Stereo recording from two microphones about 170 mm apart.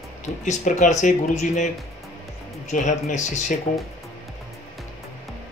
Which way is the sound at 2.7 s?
45° left (ahead or behind).